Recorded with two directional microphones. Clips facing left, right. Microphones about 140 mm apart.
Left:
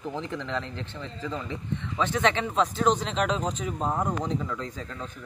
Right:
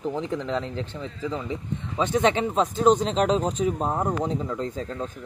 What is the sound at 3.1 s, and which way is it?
Speech, 35° right (ahead or behind).